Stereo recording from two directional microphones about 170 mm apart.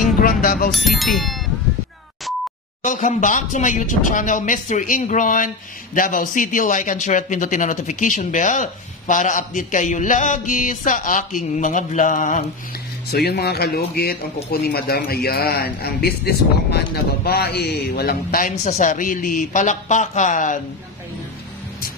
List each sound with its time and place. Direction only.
0.2 s music: 55° left (ahead or behind)
0.7 s speech: centre (ahead or behind)
2.8 s speech: 45° left (ahead or behind)
13.1 s speech: 70° left (ahead or behind); by 20.6 s 50° left (ahead or behind)